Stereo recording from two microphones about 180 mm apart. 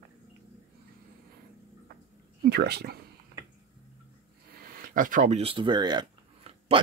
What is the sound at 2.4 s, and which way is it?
Speech, 65° right (ahead or behind).